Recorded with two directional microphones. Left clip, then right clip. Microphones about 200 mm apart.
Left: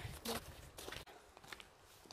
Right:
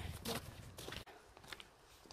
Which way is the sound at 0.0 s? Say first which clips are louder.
Even; centre (ahead or behind).